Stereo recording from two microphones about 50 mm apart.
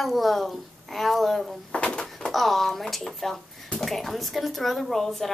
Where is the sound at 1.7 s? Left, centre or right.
Left.